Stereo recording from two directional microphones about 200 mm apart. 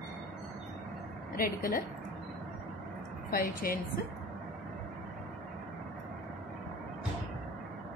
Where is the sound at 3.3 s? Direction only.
45° left (ahead or behind).